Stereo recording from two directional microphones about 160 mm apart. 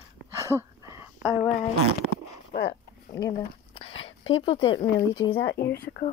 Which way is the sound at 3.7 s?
40° left (ahead or behind).